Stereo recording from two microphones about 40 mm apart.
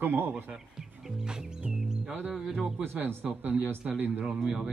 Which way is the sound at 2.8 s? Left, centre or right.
Right.